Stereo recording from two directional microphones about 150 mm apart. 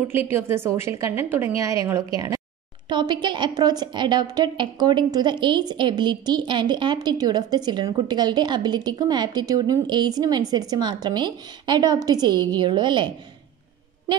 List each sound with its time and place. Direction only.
0.3 s a woman's voice: 15° right (ahead or behind); by 13.1 s 30° right (ahead or behind)